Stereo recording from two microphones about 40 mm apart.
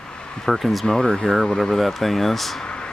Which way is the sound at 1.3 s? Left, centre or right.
Centre.